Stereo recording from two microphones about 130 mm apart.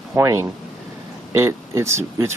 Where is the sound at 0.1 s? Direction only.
20° right (ahead or behind).